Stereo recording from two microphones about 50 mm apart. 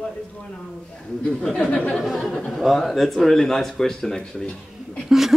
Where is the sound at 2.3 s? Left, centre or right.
Centre.